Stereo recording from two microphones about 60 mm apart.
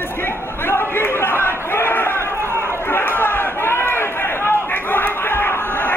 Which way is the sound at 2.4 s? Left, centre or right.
Right.